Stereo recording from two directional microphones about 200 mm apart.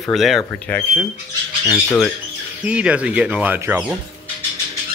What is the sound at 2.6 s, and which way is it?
Speech, 5° right (ahead or behind).